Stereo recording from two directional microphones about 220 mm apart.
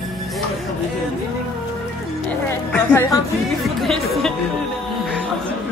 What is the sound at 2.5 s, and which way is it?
Speech, 10° left (ahead or behind).